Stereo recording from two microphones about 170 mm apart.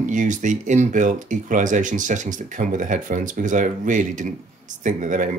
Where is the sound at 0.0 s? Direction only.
50° right (ahead or behind).